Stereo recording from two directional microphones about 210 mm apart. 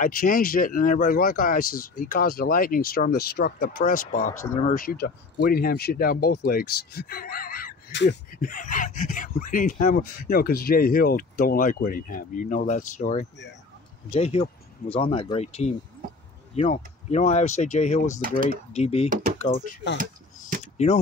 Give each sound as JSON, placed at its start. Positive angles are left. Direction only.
{"t": 0.0, "sound": "speech", "side_deg": 40}
{"t": 8.3, "sound": "speech", "side_deg": 40}
{"t": 19.0, "sound": "speech", "side_deg": -40}
{"t": 20.0, "sound": "chop", "side_deg": -40}
{"t": 20.6, "sound": "a sound", "side_deg": 30}